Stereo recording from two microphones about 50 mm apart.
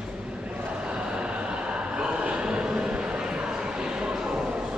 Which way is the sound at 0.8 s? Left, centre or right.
Right.